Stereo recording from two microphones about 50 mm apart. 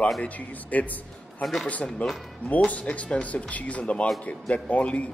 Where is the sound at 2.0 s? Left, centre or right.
Left.